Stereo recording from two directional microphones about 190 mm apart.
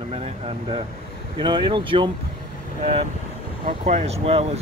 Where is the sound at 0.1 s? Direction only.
30° right (ahead or behind).